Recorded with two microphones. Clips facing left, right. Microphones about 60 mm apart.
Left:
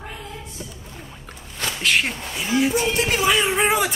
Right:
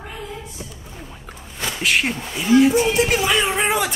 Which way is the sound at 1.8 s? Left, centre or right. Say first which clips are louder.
Right 1 dB; centre.